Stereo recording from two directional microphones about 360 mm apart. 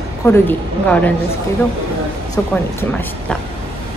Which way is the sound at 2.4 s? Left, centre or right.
Centre.